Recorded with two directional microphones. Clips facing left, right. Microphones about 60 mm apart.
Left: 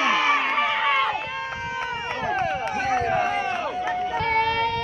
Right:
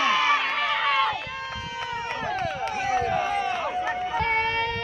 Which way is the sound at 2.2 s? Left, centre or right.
Left.